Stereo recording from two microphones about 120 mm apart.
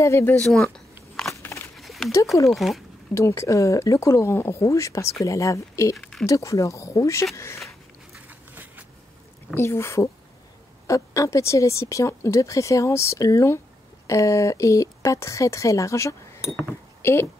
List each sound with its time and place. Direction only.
0.0 s speech: 20° left (ahead or behind)
0.4 s speech: 5° left (ahead or behind)
1.3 s a sound: 20° left (ahead or behind)
1.8 s a sound: centre (ahead or behind)
2.5 s speech: centre (ahead or behind)
3.2 s speech: 25° left (ahead or behind)
5.9 s a sound: 5° left (ahead or behind)
6.2 s speech: 25° left (ahead or behind)
8.3 s a sound: 15° right (ahead or behind)
9.5 s speech: 20° left (ahead or behind)
16.3 s glass: 5° right (ahead or behind)
17.0 s speech: 20° left (ahead or behind)